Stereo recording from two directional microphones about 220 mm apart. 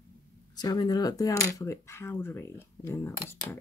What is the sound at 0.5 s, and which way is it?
Speech, 20° left (ahead or behind).